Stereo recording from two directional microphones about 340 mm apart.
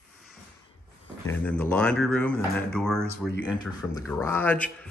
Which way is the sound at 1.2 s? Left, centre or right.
Centre.